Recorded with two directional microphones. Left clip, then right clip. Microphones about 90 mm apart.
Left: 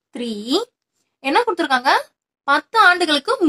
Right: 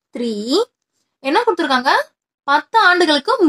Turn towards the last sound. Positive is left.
turn(degrees=-25)  # may be behind; listen again after turning